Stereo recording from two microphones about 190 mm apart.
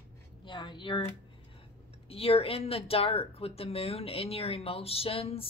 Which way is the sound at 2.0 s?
30° left (ahead or behind).